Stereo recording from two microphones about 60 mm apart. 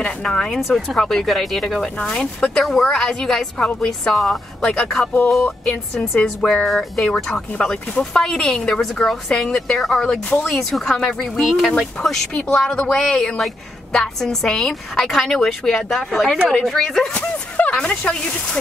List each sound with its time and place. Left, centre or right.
0.0 s a woman's voice: centre
0.6 s speech: centre
0.9 s speech: centre
2.0 s a woman's voice: centre
10.3 s speech: centre
10.7 s a woman's voice: centre
17.1 s speech: left